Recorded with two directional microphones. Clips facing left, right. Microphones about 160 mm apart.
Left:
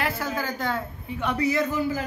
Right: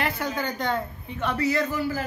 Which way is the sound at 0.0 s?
Centre (ahead or behind).